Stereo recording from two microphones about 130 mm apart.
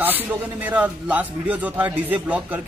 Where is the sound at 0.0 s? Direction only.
15° right (ahead or behind).